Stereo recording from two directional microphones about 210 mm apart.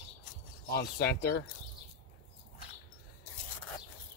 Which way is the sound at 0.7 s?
50° left (ahead or behind).